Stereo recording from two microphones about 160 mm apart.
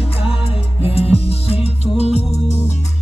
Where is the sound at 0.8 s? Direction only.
40° left (ahead or behind).